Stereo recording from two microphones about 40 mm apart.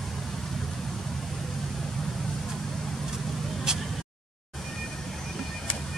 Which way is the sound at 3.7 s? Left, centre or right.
Centre.